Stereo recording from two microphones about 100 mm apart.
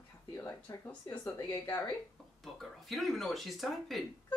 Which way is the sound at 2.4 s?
Centre (ahead or behind).